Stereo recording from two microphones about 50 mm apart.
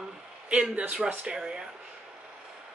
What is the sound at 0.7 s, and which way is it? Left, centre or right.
Speech, centre.